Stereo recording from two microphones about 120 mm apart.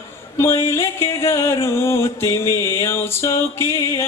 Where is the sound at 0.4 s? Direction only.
25° left (ahead or behind).